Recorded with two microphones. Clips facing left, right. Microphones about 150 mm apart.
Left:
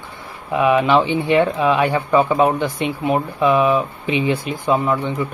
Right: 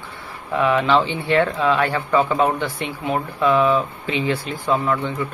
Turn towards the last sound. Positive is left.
turn(degrees=15)  # may be behind; listen again after turning